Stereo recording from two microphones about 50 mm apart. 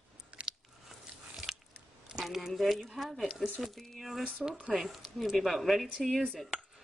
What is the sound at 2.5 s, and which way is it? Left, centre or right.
A woman's voice, centre.